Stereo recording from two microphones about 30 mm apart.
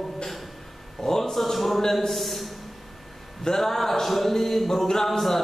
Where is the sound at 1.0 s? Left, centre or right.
Centre.